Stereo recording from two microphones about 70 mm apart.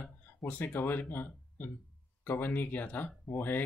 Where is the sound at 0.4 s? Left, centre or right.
Left.